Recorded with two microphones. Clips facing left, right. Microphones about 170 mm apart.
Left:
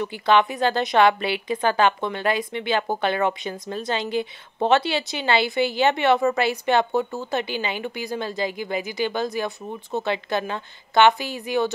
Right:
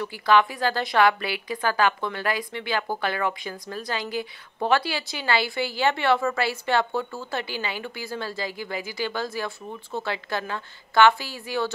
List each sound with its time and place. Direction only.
0.0 s a woman's voice: 20° left (ahead or behind)